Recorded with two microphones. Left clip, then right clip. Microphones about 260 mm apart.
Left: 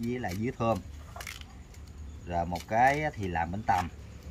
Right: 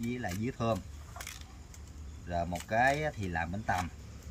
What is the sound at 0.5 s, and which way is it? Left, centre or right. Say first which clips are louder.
Speech: left 4 dB; centre.